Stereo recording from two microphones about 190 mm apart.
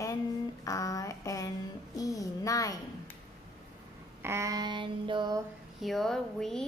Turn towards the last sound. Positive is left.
turn(degrees=0)  # may be behind; listen again after turning